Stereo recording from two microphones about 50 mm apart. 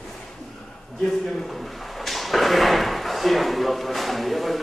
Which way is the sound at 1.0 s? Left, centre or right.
Centre.